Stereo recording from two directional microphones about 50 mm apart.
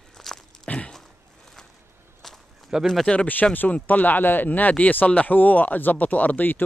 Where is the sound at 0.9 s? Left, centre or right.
Centre.